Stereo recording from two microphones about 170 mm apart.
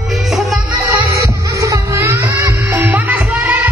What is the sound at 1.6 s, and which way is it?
Music, 20° right (ahead or behind).